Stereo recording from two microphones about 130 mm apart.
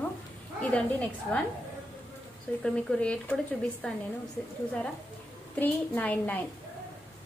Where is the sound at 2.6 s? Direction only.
10° left (ahead or behind).